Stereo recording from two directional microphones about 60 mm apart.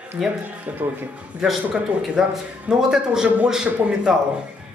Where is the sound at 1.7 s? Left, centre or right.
Centre.